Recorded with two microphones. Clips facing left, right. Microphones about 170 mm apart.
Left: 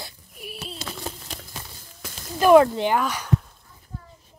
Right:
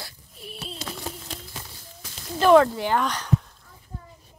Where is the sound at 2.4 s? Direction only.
10° left (ahead or behind).